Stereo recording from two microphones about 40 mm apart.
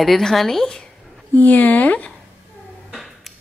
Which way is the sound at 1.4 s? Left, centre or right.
Left.